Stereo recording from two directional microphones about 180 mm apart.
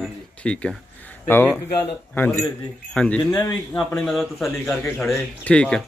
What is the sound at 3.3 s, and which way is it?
Speech, 20° left (ahead or behind).